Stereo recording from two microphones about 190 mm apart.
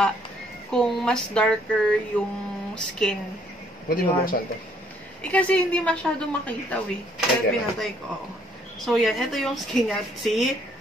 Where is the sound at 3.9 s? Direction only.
50° left (ahead or behind).